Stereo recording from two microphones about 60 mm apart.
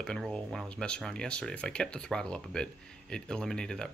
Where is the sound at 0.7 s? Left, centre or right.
Centre.